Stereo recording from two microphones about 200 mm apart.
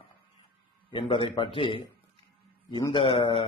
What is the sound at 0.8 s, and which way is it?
Speech, 25° left (ahead or behind).